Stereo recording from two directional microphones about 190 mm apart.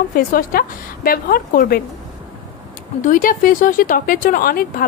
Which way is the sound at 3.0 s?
45° left (ahead or behind).